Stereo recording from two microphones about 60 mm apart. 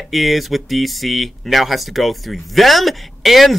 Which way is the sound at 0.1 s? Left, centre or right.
Centre.